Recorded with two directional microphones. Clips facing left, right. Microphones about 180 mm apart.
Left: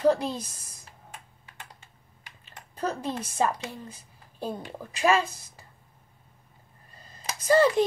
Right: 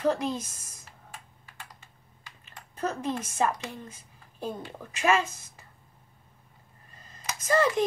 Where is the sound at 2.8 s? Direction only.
35° left (ahead or behind).